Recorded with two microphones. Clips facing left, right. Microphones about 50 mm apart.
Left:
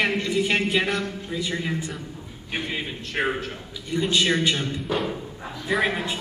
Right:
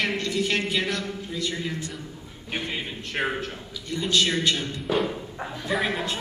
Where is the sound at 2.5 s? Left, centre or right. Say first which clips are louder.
Left 1 dB; centre.